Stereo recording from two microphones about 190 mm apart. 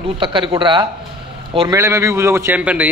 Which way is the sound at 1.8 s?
15° right (ahead or behind).